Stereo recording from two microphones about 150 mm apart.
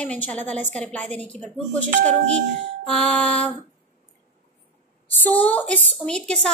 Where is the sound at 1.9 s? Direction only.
50° right (ahead or behind).